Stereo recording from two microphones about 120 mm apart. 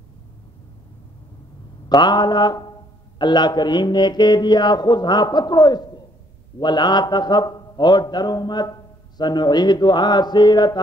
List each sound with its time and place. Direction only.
1.9 s music: 35° left (ahead or behind)